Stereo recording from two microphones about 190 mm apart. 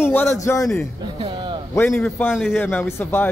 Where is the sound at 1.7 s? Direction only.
10° left (ahead or behind).